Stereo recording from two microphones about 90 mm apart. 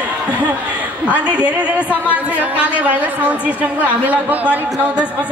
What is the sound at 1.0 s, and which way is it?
A woman's voice, 15° right (ahead or behind).